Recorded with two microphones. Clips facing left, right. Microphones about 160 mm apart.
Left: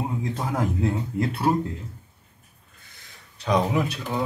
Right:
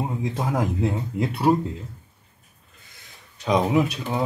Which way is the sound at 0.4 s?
15° right (ahead or behind).